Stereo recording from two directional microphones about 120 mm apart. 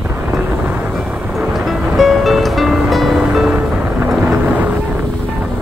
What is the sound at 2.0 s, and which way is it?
Music, centre (ahead or behind).